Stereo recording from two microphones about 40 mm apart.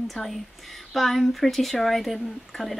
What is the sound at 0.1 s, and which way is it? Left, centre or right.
Speech, centre.